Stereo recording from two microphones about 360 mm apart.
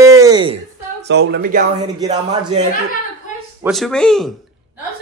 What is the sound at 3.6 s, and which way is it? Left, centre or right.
Speech, centre.